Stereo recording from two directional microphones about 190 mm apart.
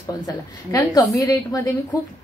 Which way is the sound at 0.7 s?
15° left (ahead or behind).